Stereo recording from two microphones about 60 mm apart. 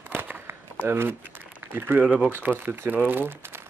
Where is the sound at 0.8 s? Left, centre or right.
Right.